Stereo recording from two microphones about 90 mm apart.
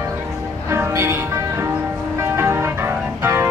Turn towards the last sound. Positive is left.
turn(degrees=-25)  # may be behind; listen again after turning